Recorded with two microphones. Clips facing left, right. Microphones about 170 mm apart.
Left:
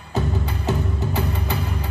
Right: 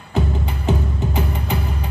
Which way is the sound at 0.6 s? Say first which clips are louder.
Right 3 dB; 15° right (ahead or behind).